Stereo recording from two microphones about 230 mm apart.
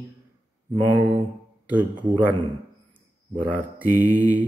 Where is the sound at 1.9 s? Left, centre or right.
Centre.